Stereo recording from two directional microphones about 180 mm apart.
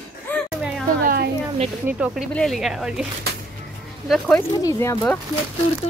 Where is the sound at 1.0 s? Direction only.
55° right (ahead or behind).